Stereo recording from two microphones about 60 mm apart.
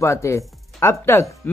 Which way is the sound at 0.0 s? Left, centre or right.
Left.